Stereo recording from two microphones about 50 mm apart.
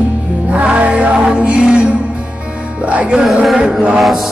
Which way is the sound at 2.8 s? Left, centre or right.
Right.